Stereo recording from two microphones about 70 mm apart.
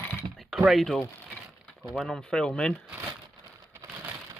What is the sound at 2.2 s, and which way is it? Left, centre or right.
Speech, centre.